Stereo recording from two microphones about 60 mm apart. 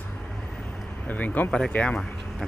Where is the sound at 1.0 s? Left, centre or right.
Left.